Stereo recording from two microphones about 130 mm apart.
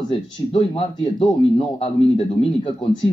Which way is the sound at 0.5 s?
45° left (ahead or behind).